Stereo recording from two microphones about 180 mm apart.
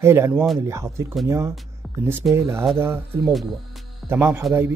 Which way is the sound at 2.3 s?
15° right (ahead or behind).